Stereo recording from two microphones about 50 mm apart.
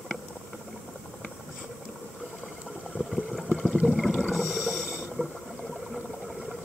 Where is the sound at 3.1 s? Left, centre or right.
Centre.